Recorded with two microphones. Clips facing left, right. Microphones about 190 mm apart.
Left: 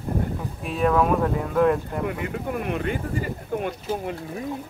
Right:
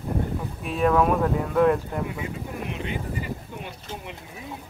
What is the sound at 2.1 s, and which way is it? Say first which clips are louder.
Speech: left 5 dB; 60° left (ahead or behind).